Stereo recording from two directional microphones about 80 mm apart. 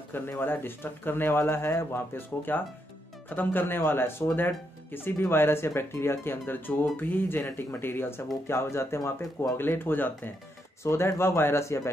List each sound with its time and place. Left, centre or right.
0.1 s speech: left